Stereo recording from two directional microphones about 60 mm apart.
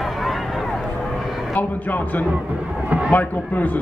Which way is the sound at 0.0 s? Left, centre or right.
Centre.